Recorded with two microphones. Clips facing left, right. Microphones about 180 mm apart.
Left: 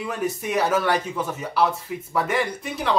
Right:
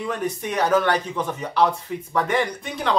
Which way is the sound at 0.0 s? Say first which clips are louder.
Even; 5° left (ahead or behind).